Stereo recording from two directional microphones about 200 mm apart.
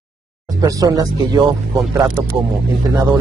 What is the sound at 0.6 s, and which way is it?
Speech, 20° right (ahead or behind).